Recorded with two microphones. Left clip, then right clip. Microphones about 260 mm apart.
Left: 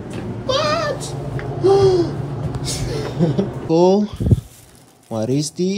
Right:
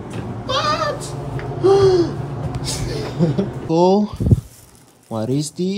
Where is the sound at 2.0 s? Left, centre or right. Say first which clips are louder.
Even; centre.